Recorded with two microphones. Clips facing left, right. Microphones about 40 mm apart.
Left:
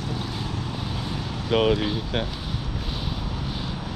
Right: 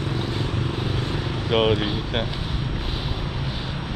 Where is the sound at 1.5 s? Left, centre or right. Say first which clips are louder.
Right 1 dB; right.